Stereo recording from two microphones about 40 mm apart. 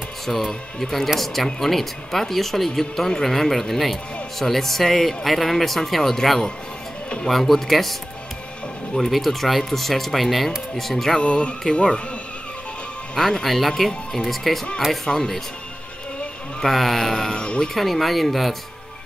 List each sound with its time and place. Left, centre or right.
0.5 s speech: centre
9.1 s speech: centre
11.1 s music: left
13.1 s speech: centre
16.6 s speech: centre
17.4 s music: left
17.7 s speech: centre